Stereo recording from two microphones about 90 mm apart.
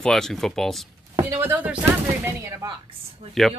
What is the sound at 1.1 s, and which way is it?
Speech, 35° right (ahead or behind).